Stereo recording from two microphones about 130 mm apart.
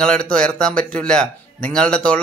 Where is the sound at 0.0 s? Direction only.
5° left (ahead or behind).